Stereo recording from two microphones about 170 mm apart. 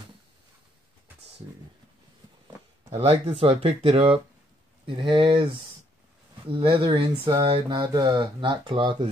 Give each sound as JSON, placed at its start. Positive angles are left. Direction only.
{"t": 2.9, "sound": "speech", "side_deg": -35}
{"t": 6.6, "sound": "speech", "side_deg": -30}